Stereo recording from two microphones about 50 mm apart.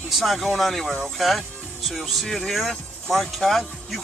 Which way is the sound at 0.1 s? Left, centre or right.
Centre.